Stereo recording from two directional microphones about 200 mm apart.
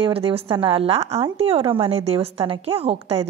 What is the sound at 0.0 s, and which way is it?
A woman's voice, 30° right (ahead or behind).